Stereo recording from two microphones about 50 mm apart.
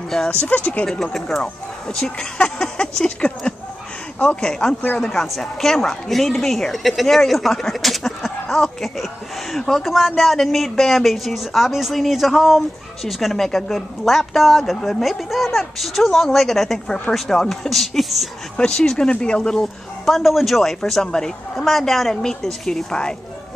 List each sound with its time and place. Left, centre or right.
0.3 s speech: left
0.8 s speech: centre
2.3 s a sound: centre
3.2 s speech: left
5.0 s a man's voice: centre
18.6 s speech: centre
20.1 s a man's voice: centre
21.5 s a man's voice: centre